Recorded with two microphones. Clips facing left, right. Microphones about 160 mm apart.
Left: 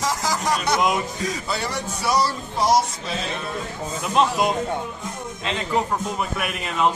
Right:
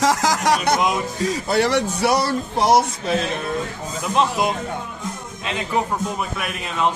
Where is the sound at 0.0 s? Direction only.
90° right.